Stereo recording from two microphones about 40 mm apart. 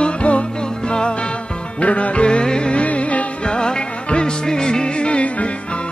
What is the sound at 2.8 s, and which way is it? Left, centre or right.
Music, left.